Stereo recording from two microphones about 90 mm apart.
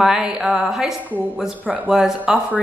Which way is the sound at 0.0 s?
5° right (ahead or behind).